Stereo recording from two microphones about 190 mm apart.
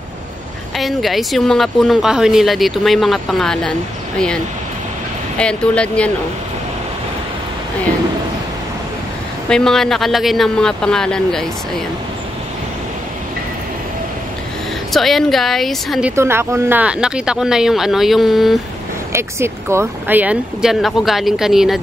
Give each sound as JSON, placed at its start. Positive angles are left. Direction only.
{"t": 0.7, "sound": "speech", "side_deg": 0}
{"t": 5.4, "sound": "speech", "side_deg": 5}
{"t": 9.5, "sound": "speech", "side_deg": 5}
{"t": 14.9, "sound": "speech", "side_deg": 0}
{"t": 16.2, "sound": "speech", "side_deg": -15}
{"t": 19.1, "sound": "speech", "side_deg": -15}